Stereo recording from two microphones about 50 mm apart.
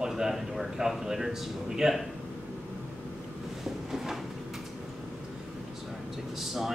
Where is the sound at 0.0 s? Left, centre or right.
Centre.